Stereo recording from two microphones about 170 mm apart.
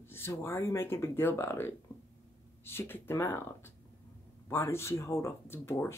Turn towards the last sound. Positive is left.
turn(degrees=15)  # may be behind; listen again after turning